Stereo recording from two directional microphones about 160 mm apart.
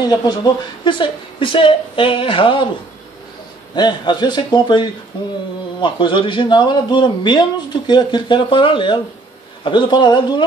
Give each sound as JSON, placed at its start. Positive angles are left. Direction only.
{"t": 0.1, "sound": "speech", "side_deg": 30}
{"t": 3.7, "sound": "a man's voice", "side_deg": 25}